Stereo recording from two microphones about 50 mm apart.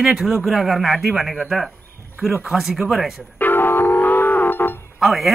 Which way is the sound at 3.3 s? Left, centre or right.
Left.